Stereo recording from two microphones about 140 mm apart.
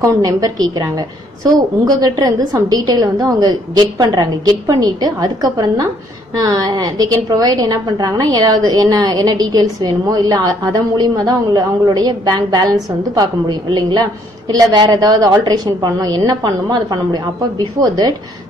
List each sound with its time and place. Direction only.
0.0 s a woman's voice: 30° right (ahead or behind)